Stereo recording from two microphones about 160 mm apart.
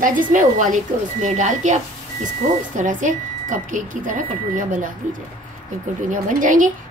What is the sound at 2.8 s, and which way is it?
A woman's voice, 55° right (ahead or behind).